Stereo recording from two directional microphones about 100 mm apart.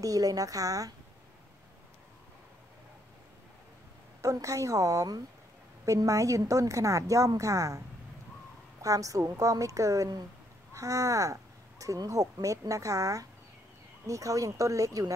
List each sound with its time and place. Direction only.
0.0 s a woman's voice: 35° right (ahead or behind)
4.2 s a woman's voice: 30° right (ahead or behind)
8.8 s a woman's voice: 35° right (ahead or behind)